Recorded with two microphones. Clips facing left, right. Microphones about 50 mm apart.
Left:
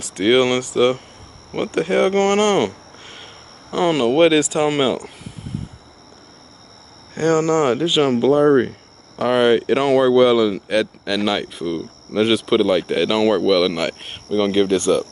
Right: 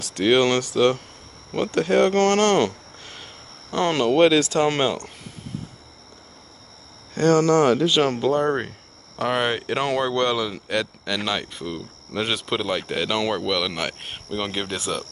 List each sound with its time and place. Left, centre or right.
0.0 s speech: left
7.2 s speech: left
8.0 s speech: centre